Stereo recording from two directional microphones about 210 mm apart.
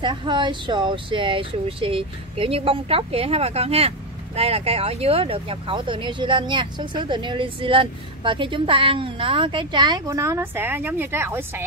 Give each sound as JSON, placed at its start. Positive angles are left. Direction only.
{"t": 0.0, "sound": "speech", "side_deg": -20}